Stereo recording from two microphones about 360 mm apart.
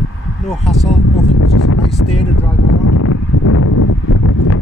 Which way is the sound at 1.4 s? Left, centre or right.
Left.